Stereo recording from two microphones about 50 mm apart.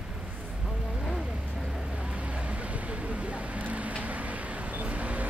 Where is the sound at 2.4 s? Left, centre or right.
Right.